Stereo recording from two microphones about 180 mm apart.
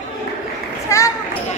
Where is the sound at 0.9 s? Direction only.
15° left (ahead or behind).